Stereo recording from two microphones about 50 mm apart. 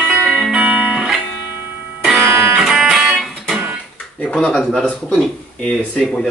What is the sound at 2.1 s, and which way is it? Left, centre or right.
Music, centre.